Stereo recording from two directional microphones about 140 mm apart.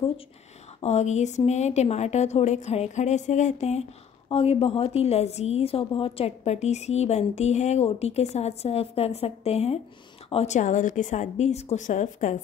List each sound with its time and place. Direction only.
0.7 s a woman's voice: 50° left (ahead or behind)
4.3 s a woman's voice: 45° left (ahead or behind); by 12.4 s 60° left (ahead or behind)